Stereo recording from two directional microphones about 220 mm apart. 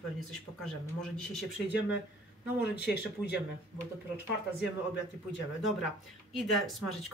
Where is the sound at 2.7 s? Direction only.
50° left (ahead or behind).